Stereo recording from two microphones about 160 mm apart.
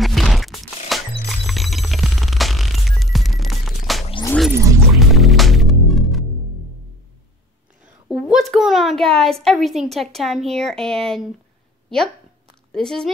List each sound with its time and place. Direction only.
0.0 s music: centre (ahead or behind)
4.5 s music: 15° right (ahead or behind)
4.9 s music: centre (ahead or behind)
7.8 s a child's voice: 5° right (ahead or behind)
12.7 s a woman's voice: 5° left (ahead or behind)